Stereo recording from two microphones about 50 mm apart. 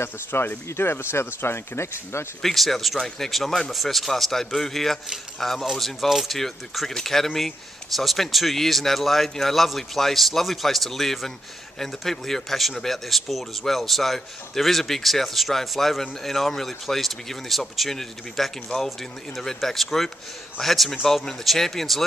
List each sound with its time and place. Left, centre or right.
0.0 s speech: left
2.4 s a man's voice: centre